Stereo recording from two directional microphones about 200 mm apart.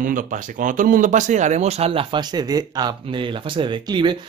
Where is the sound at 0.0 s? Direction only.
40° right (ahead or behind).